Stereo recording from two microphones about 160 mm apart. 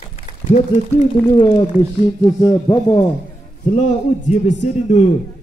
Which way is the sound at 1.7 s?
35° left (ahead or behind).